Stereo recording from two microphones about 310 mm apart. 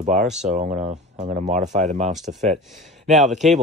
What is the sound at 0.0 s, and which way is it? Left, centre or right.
Speech, right.